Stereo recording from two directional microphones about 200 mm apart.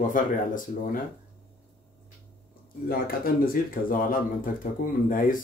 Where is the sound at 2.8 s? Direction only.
45° left (ahead or behind).